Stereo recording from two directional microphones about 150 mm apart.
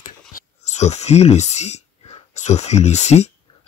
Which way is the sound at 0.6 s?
45° left (ahead or behind).